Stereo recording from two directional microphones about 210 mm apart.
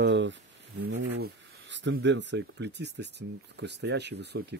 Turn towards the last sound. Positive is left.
turn(degrees=-55)  # may be behind; listen again after turning